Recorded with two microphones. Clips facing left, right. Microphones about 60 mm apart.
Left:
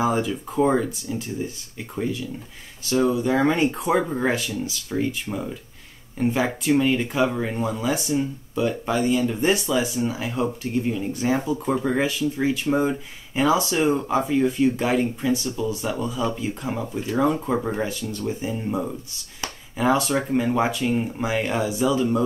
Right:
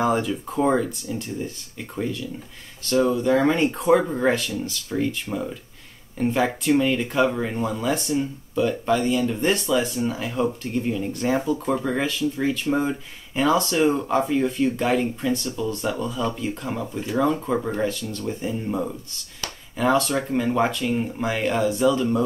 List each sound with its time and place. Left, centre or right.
0.0 s speech: centre